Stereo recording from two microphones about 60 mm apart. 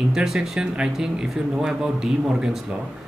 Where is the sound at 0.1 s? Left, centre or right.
Centre.